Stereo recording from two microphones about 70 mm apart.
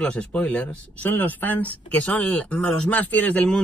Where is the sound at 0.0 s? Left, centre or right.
Centre.